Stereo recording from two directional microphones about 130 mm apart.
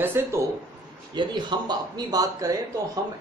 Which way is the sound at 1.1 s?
35° right (ahead or behind).